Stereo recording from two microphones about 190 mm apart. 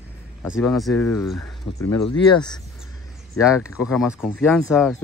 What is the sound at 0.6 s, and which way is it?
Speech, centre (ahead or behind).